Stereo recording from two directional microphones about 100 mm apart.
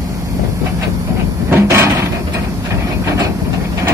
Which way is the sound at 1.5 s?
25° right (ahead or behind).